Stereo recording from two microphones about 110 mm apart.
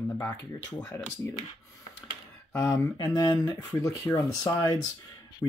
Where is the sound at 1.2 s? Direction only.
25° left (ahead or behind).